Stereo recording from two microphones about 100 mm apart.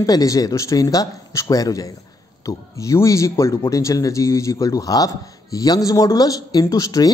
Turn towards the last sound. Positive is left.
turn(degrees=35)  # may be behind; listen again after turning